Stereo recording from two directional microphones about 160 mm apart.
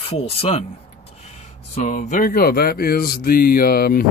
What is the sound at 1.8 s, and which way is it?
Speech, 50° left (ahead or behind).